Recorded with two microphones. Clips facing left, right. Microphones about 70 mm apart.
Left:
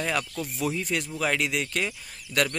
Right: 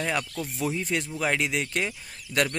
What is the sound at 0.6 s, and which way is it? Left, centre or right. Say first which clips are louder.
Speech: even; right.